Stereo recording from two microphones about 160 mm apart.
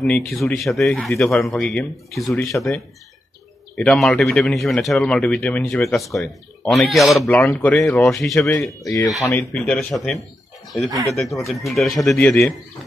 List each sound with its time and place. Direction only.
0.0 s a man's voice: 5° left (ahead or behind)
3.7 s a man's voice: 5° left (ahead or behind)
7.2 s speech: 15° left (ahead or behind)
8.8 s a man's voice: 20° left (ahead or behind); by 12.5 s 5° left (ahead or behind)